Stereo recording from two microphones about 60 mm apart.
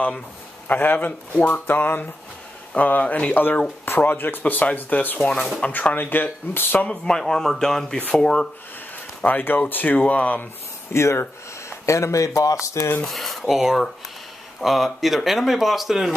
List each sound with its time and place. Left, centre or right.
0.7 s speech: left
3.8 s speech: left
5.2 s speech: centre
5.7 s speech: left
6.9 s speech: centre
9.2 s speech: left
10.9 s a man's voice: left
13.0 s speech: centre